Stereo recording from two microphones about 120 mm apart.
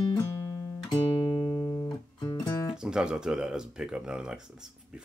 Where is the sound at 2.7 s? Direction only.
5° right (ahead or behind).